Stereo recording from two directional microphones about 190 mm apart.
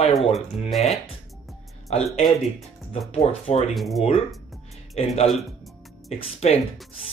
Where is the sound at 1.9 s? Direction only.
35° left (ahead or behind).